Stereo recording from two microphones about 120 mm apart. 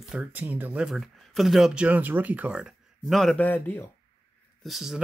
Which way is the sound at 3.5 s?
15° left (ahead or behind).